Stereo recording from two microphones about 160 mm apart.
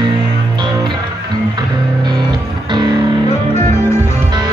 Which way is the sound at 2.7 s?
25° right (ahead or behind).